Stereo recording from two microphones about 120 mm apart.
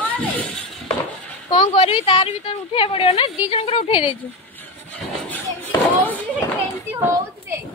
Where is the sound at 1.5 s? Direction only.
50° left (ahead or behind).